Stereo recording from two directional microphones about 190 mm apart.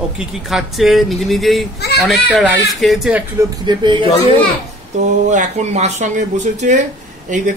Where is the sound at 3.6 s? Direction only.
25° right (ahead or behind).